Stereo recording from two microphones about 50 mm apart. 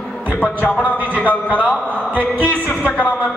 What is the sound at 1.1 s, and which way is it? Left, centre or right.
A man's voice, left.